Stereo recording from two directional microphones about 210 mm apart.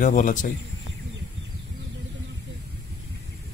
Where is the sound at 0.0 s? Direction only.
35° left (ahead or behind).